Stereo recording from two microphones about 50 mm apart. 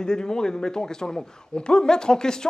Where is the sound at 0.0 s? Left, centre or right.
Centre.